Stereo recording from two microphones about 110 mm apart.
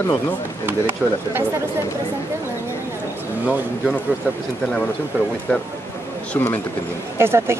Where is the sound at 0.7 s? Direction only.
20° right (ahead or behind).